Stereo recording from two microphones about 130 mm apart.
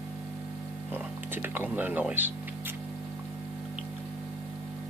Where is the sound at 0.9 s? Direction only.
15° right (ahead or behind).